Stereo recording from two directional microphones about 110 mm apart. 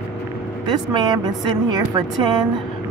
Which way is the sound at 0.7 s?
40° right (ahead or behind).